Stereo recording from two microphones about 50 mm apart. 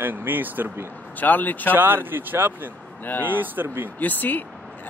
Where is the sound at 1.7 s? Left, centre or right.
Right.